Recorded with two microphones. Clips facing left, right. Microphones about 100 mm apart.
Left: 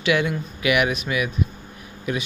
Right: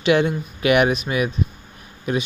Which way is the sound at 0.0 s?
30° right (ahead or behind).